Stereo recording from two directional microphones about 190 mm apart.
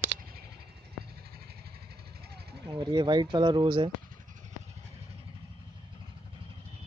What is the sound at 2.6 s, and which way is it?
Speech, 25° right (ahead or behind).